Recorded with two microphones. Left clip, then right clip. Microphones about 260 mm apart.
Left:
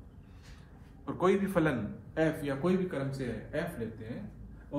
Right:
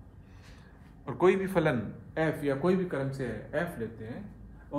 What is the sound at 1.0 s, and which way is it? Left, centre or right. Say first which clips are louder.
A man's voice: right 3 dB; right.